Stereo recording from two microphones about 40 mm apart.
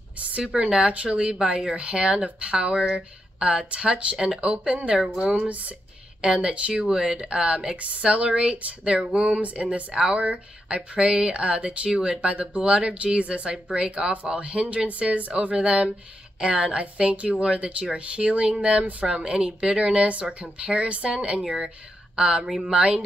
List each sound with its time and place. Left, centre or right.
0.7 s speech: right
5.2 s speech: right
6.2 s speech: right
6.7 s speech: centre